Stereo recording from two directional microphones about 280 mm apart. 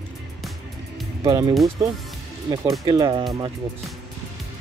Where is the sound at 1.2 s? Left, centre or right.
Centre.